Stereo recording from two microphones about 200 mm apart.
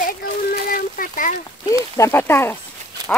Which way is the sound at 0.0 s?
45° left (ahead or behind).